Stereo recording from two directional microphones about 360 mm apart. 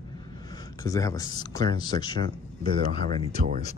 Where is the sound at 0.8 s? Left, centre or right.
Centre.